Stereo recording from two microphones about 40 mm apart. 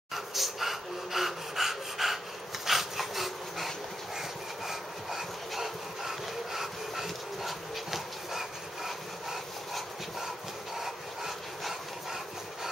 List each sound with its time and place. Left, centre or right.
0.1 s speech: centre
2.6 s dog: centre
4.6 s a sound: centre
10.8 s dog: centre